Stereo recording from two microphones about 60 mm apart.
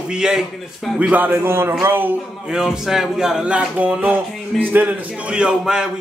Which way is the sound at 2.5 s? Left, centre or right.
Centre.